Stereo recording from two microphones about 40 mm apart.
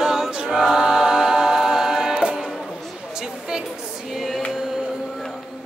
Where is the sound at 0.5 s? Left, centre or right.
Centre.